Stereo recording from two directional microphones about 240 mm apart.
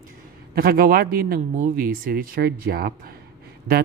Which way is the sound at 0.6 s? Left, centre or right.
Right.